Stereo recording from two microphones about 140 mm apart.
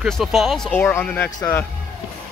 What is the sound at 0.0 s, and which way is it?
Speech, centre (ahead or behind).